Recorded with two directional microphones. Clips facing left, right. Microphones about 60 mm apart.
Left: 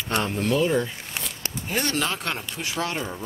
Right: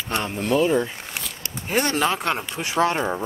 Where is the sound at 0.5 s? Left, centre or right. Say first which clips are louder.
Right 4 dB; right.